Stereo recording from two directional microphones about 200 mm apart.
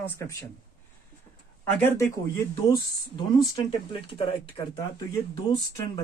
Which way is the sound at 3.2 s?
25° left (ahead or behind).